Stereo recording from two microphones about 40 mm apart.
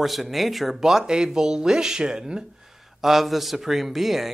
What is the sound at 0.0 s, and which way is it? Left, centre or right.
A man's voice, centre.